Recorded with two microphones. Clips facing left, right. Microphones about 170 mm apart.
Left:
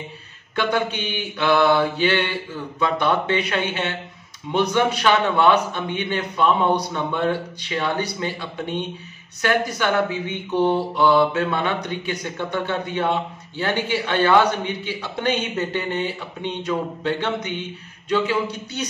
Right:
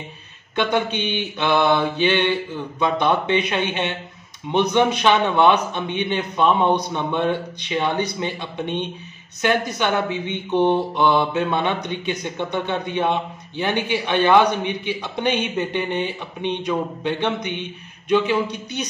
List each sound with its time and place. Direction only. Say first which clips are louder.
0.6 s speech: right 1 dB; 20° right (ahead or behind)